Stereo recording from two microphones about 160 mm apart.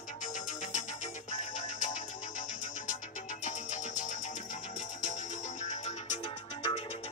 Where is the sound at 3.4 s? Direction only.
50° left (ahead or behind).